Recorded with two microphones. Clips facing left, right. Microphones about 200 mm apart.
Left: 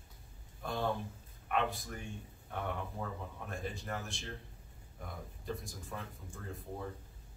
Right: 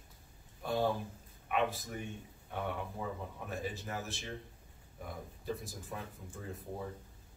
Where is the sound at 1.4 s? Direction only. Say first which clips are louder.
Right 1 dB; 5° right (ahead or behind).